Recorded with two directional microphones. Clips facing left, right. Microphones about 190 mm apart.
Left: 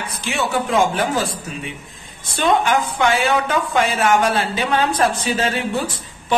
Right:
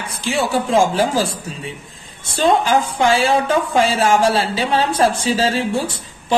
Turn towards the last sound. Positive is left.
turn(degrees=-30)  # may be behind; listen again after turning